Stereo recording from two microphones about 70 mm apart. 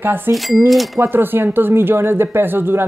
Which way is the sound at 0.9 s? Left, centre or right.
Right.